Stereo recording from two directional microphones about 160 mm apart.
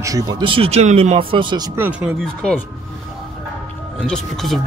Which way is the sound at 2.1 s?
5° left (ahead or behind).